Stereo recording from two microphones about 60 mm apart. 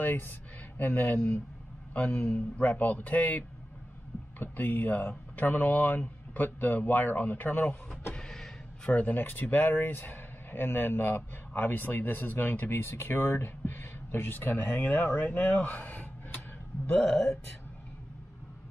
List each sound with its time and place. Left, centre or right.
0.0 s a man's voice: left
8.1 s a sound: centre
8.8 s speech: left